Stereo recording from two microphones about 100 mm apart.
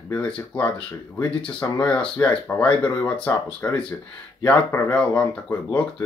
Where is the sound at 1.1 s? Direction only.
25° left (ahead or behind).